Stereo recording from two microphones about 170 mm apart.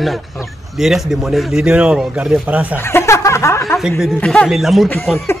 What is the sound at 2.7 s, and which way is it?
Speech, 15° left (ahead or behind).